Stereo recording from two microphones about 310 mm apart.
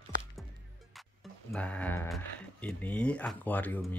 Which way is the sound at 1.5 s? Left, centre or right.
Centre.